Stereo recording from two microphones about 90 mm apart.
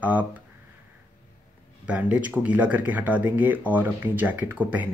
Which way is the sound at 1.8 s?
15° right (ahead or behind).